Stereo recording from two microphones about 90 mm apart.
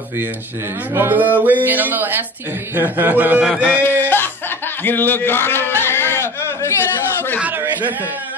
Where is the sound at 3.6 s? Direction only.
20° left (ahead or behind).